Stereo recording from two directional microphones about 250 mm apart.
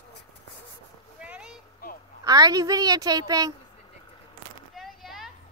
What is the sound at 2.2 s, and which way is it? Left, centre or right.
A woman's voice, centre.